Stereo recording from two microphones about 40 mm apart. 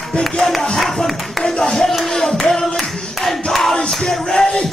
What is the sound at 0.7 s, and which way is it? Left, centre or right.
Music, centre.